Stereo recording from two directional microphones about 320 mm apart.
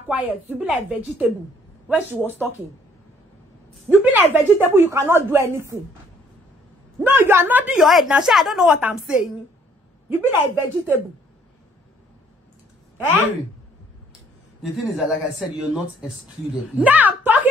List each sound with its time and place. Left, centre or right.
0.1 s a woman's voice: centre
3.8 s speech: centre
7.0 s a woman's voice: centre
14.6 s a woman's voice: centre